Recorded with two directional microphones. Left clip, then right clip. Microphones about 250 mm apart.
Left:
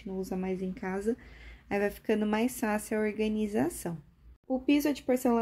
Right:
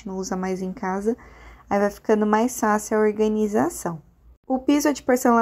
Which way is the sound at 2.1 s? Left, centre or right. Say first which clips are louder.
Right 12 dB; centre.